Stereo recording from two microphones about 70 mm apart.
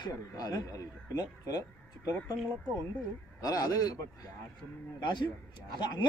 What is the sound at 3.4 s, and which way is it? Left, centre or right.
Speech, left.